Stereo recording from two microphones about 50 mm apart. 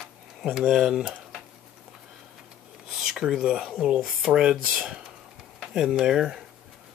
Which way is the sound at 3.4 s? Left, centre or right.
Centre.